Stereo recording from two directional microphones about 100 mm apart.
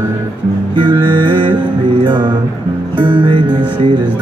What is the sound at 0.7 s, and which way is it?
Music, 50° right (ahead or behind).